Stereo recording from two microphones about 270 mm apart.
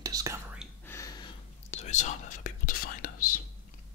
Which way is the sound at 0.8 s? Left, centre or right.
Centre.